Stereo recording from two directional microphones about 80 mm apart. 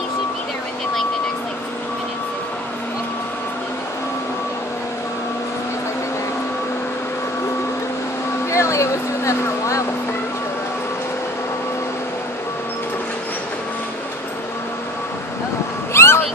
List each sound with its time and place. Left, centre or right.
8.5 s vehicle: left
15.9 s cat: left